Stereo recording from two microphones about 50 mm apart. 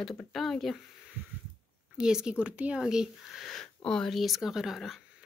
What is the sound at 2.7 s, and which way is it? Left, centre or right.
Speech, centre.